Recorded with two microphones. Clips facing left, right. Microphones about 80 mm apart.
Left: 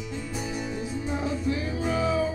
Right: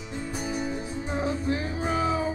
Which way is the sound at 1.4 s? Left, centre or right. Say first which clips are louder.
Even; right.